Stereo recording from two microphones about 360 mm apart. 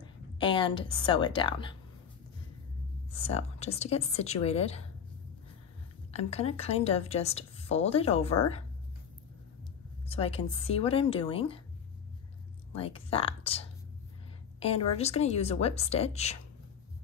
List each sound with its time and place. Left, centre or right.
0.0 s a woman's voice: centre
3.1 s a woman's voice: centre
6.1 s a woman's voice: centre
10.0 s a woman's voice: centre
12.7 s a woman's voice: centre
15.0 s a woman's voice: centre